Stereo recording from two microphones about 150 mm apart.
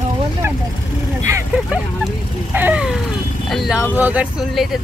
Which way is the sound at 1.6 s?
10° right (ahead or behind).